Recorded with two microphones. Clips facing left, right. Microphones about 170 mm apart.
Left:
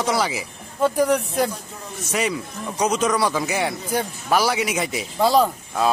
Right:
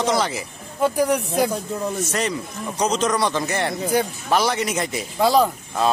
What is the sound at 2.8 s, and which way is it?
Speech, 10° left (ahead or behind).